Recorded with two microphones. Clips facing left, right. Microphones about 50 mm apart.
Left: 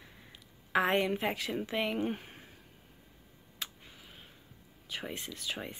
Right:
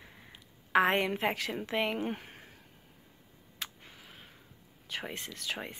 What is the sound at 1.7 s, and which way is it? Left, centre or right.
Speech, right.